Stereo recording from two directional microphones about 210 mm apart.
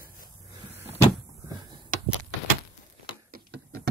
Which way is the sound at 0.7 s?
10° right (ahead or behind).